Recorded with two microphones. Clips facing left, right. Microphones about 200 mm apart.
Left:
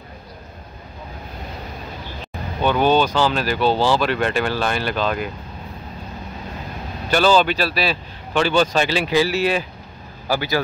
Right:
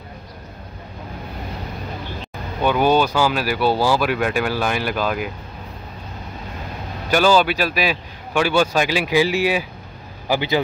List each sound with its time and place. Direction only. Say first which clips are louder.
2.6 s speech: even; 10° right (ahead or behind)
7.1 s speech: even; 10° right (ahead or behind)